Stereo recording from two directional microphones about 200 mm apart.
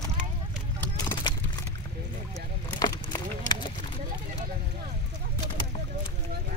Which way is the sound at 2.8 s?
15° left (ahead or behind).